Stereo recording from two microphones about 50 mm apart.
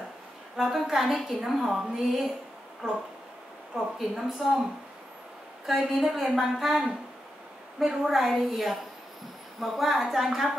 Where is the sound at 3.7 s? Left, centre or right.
Centre.